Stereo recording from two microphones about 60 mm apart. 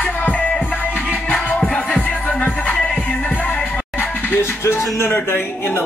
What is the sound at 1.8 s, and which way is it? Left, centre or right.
Music, left.